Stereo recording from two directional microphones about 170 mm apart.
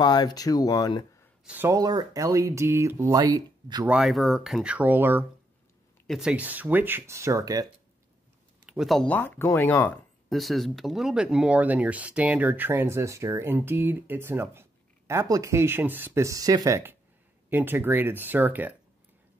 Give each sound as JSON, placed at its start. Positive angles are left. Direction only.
{"t": 0.0, "sound": "speech", "side_deg": 25}
{"t": 1.4, "sound": "speech", "side_deg": -10}
{"t": 3.8, "sound": "speech", "side_deg": -5}
{"t": 8.6, "sound": "speech", "side_deg": 0}